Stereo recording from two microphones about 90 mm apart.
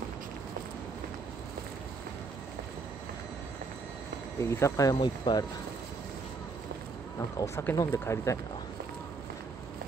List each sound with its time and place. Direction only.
4.4 s speech: 30° left (ahead or behind)
5.0 s speech: 55° left (ahead or behind)
7.3 s speech: 35° left (ahead or behind)